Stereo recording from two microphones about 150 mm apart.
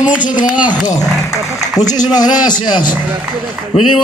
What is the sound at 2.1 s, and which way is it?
Speech, 25° left (ahead or behind).